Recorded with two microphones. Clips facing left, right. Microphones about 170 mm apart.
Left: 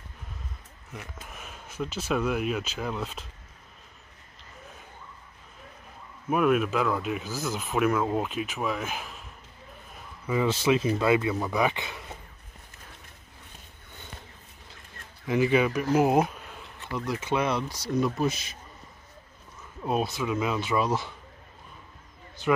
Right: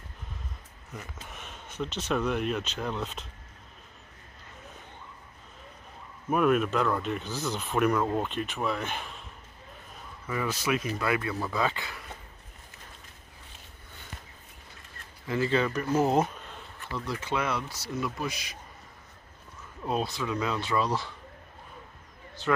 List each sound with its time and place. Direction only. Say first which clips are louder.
0.9 s speech: even; 5° left (ahead or behind)
6.3 s speech: left 1 dB; 5° left (ahead or behind)
10.2 s speech: left 6 dB; 20° left (ahead or behind)
15.2 s speech: left 4 dB; 15° left (ahead or behind)
19.8 s speech: left 2 dB; 15° left (ahead or behind)
22.4 s speech: left 3 dB; 15° left (ahead or behind)